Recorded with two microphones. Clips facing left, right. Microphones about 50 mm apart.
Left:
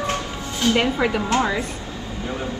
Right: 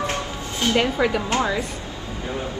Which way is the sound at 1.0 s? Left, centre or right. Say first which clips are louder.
Even; centre.